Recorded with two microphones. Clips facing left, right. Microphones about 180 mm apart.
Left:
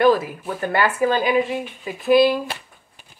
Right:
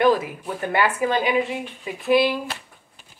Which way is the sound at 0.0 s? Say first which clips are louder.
Left 2 dB; 20° right (ahead or behind).